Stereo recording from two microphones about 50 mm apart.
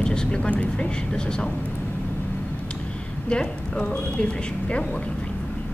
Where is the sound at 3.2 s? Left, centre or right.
Centre.